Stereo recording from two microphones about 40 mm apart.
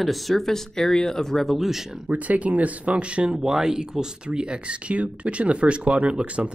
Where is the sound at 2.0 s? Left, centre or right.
Right.